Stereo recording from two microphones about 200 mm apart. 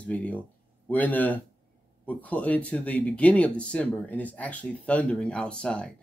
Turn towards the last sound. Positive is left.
turn(degrees=5)  # may be behind; listen again after turning